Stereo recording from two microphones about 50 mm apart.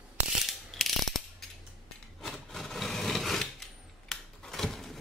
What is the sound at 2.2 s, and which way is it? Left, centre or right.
Wood, centre.